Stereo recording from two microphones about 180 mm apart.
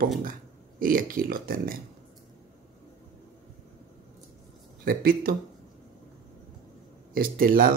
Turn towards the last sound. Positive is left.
turn(degrees=-55)  # may be behind; listen again after turning